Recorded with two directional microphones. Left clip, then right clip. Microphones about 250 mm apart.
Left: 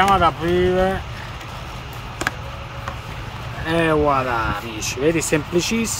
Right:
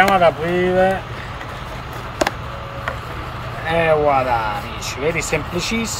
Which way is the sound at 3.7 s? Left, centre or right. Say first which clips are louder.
Right 2 dB; left.